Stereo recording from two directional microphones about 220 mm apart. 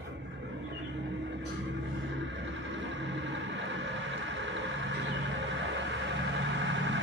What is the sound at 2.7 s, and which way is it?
Vehicle, 55° right (ahead or behind).